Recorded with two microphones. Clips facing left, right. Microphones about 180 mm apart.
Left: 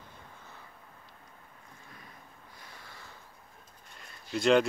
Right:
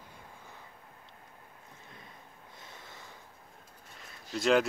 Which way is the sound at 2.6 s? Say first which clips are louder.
Right 1 dB; 20° right (ahead or behind).